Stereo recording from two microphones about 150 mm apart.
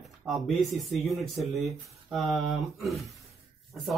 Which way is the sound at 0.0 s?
Centre (ahead or behind).